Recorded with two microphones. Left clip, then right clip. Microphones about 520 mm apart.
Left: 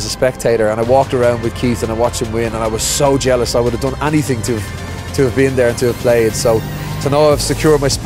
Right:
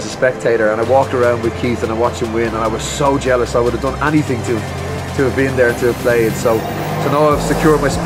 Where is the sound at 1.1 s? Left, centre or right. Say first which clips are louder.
Even; left.